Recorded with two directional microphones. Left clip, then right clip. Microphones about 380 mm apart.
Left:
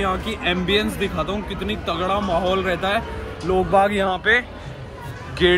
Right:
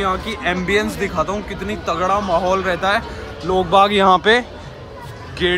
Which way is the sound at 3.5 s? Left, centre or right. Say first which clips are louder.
Right 4 dB; centre.